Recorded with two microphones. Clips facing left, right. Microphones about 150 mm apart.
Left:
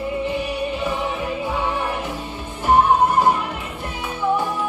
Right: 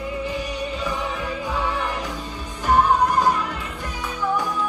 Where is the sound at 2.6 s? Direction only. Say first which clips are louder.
Left 2 dB; 25° left (ahead or behind).